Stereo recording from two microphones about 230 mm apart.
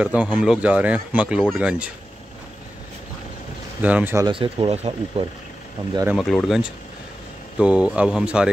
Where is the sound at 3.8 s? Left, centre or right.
Centre; by 5.2 s right.